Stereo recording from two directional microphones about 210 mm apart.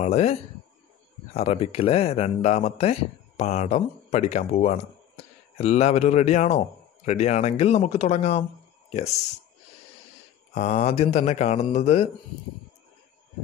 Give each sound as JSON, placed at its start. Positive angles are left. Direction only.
{"t": 0.0, "sound": "speech", "side_deg": 30}
{"t": 10.6, "sound": "speech", "side_deg": 30}